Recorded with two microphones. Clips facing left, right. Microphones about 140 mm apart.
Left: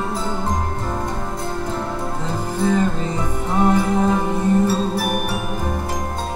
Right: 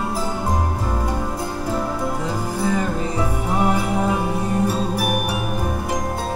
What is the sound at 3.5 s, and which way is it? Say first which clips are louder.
Music: left 4 dB; 10° right (ahead or behind).